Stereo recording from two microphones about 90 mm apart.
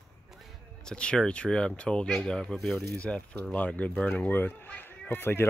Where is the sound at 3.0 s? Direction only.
15° left (ahead or behind).